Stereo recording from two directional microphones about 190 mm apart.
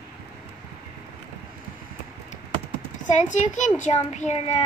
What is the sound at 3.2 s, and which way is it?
A child's voice, 40° left (ahead or behind).